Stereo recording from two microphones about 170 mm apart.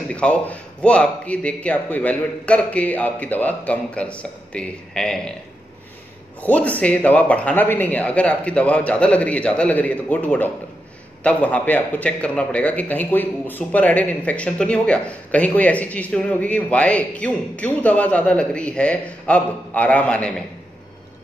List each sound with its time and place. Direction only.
0.1 s a man's voice: 5° left (ahead or behind)
6.4 s a man's voice: 10° left (ahead or behind)